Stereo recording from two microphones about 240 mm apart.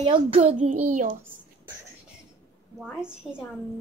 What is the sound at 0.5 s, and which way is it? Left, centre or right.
Speech, right.